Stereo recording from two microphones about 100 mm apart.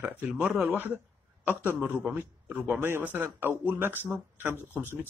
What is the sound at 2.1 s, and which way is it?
A man's voice, 20° right (ahead or behind).